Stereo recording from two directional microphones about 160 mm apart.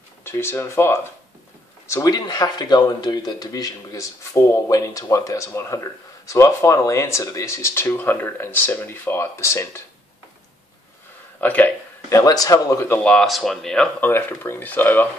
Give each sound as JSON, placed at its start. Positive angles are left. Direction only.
{"t": 0.2, "sound": "speech", "side_deg": 15}
{"t": 11.4, "sound": "speech", "side_deg": 10}